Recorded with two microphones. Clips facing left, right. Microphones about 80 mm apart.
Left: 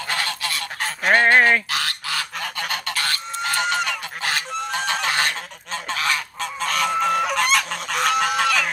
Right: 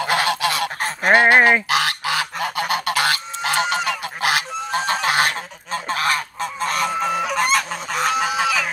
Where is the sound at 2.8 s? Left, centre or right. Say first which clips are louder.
Right 6 dB; right.